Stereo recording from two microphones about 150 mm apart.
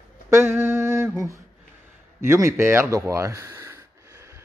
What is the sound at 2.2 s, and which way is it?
Speech, 20° right (ahead or behind).